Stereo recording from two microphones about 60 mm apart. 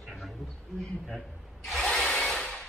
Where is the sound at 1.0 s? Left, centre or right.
Centre.